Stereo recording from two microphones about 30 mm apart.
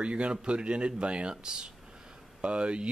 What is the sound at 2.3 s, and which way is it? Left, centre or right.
Speech, right.